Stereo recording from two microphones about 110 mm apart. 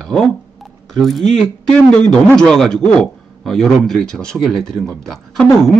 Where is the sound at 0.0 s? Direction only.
5° left (ahead or behind).